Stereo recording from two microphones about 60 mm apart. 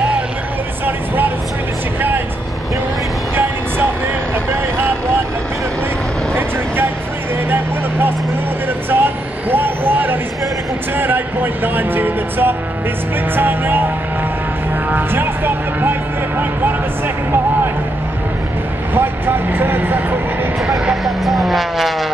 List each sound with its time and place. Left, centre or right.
2.0 s vehicle: right
4.5 s vehicle: right
7.4 s vehicle: right
11.0 s music: right
14.9 s vehicle: right
18.9 s vehicle: right
20.9 s vehicle: centre